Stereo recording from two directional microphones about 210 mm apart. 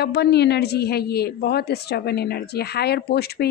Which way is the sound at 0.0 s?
50° left (ahead or behind).